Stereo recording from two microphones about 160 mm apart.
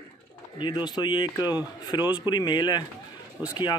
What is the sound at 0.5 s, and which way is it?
Speech, 30° left (ahead or behind).